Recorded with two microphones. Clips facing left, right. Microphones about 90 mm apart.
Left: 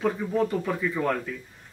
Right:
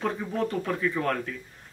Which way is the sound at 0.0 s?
5° left (ahead or behind).